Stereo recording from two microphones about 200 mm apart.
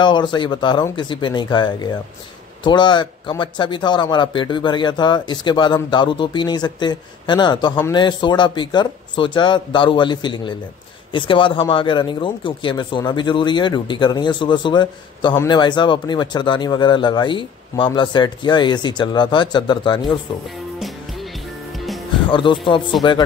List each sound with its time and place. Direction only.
0.0 s speech: 20° left (ahead or behind)
20.8 s music: centre (ahead or behind)
22.3 s speech: 25° left (ahead or behind)